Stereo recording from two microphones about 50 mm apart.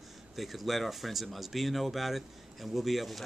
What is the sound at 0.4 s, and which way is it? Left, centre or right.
Speech, centre.